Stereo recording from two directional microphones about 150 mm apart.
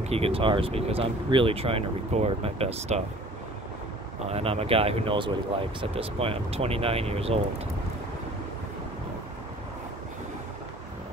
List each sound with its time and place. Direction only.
0.0 s speech: 40° right (ahead or behind)
4.3 s speech: 40° right (ahead or behind)